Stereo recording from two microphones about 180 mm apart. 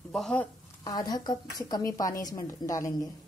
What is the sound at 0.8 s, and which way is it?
Speech, 20° left (ahead or behind).